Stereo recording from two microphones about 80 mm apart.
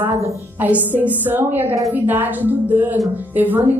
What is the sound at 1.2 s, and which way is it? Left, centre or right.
A woman's voice, right.